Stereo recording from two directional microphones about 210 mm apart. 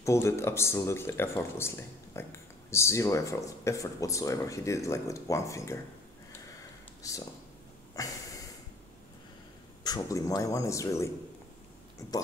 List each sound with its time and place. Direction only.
0.0 s speech: 15° left (ahead or behind)
7.0 s speech: 15° left (ahead or behind)
9.8 s speech: 15° left (ahead or behind)